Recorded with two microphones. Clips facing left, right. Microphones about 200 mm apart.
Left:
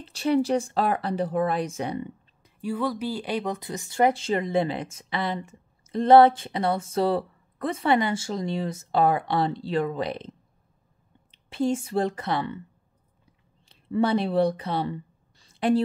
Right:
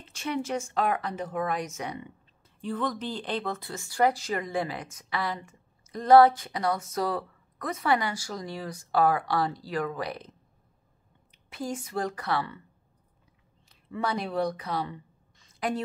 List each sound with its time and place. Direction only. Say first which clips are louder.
0.0 s speech: left 9 dB; 35° left (ahead or behind)
2.4 s speech: left 3 dB; 10° left (ahead or behind)
11.3 s speech: left 9 dB; 30° left (ahead or behind)
13.7 s speech: left 8 dB; 30° left (ahead or behind)